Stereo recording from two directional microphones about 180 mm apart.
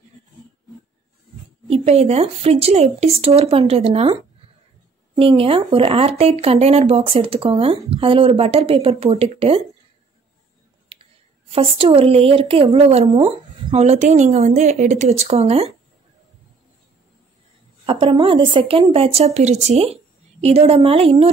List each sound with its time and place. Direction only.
1.7 s speech: 35° right (ahead or behind)
11.5 s speech: 30° right (ahead or behind)
17.8 s speech: 30° right (ahead or behind)